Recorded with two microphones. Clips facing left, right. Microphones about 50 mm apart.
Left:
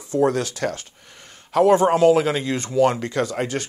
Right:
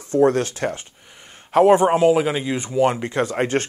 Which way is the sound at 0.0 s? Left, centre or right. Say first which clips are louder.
Right 3 dB; right.